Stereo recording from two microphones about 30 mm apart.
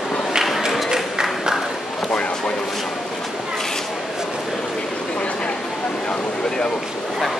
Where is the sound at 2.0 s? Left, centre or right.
Left.